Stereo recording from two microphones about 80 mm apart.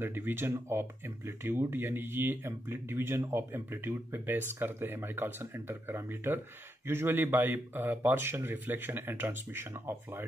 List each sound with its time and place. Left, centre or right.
0.0 s speech: right